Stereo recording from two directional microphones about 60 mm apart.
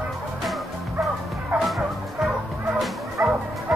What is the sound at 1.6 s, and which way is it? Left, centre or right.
Music, centre.